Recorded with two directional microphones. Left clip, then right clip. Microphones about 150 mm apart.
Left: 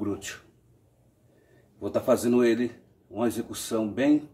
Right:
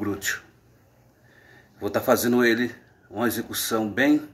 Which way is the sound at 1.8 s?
15° left (ahead or behind).